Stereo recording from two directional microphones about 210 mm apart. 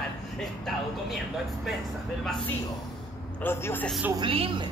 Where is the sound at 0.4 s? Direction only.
Centre (ahead or behind).